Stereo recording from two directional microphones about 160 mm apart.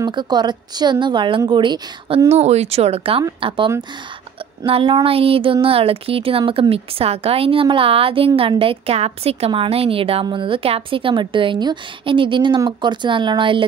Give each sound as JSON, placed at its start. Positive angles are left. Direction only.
{"t": 0.0, "sound": "a woman's voice", "side_deg": -25}